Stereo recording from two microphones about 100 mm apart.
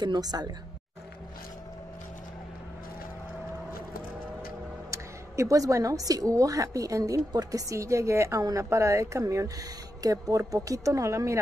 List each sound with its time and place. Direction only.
0.0 s a woman's voice: 45° right (ahead or behind)
4.9 s a woman's voice: 30° right (ahead or behind)